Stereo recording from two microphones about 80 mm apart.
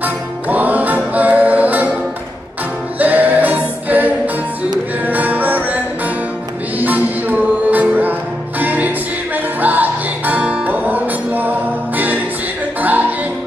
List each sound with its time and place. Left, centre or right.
0.0 s music: right
3.0 s music: right